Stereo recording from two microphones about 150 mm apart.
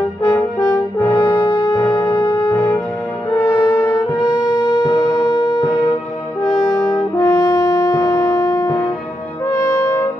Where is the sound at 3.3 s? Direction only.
15° left (ahead or behind).